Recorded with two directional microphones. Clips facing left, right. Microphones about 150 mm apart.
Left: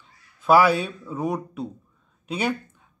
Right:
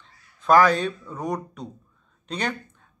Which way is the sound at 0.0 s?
5° left (ahead or behind).